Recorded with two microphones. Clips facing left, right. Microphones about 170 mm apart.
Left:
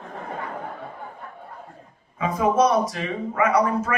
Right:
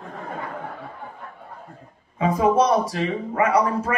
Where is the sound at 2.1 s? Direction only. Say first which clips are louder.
Right 2 dB; 30° right (ahead or behind).